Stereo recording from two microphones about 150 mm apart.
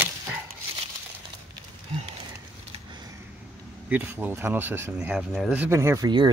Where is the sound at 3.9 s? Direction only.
10° right (ahead or behind).